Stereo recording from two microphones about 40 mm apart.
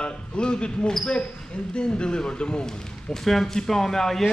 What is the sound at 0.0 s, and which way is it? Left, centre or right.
Basketball bounce, left.